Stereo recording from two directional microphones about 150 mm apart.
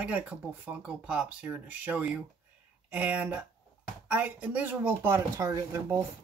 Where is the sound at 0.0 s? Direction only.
10° right (ahead or behind).